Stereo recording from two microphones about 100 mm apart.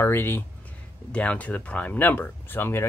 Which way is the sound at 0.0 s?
25° left (ahead or behind).